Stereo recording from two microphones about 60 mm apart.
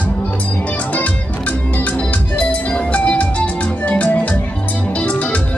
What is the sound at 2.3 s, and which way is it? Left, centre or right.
Music, left.